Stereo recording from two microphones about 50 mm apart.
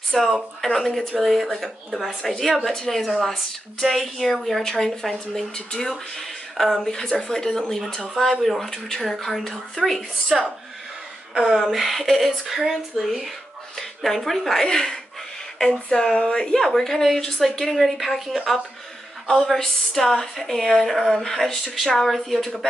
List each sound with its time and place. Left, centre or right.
0.1 s a woman's voice: centre
11.4 s a woman's voice: centre